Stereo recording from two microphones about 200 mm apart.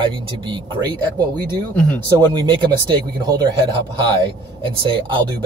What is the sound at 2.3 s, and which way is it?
Speech, 25° right (ahead or behind).